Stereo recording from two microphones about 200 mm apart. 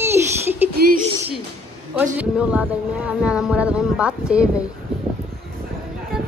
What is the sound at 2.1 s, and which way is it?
Speech, 5° right (ahead or behind).